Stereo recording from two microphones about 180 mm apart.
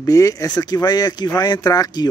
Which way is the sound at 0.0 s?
20° left (ahead or behind).